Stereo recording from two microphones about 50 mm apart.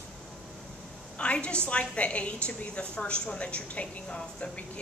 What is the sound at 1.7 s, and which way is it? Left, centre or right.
A woman's voice, left.